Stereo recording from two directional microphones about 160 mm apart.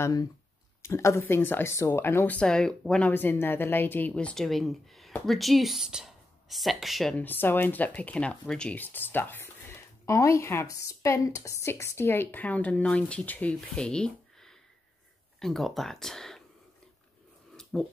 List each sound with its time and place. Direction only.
0.0 s speech: 20° left (ahead or behind); by 16.4 s 5° left (ahead or behind)
17.7 s speech: 5° left (ahead or behind)